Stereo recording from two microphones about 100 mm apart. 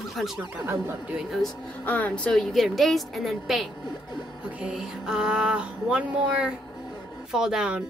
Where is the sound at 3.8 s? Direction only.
45° left (ahead or behind).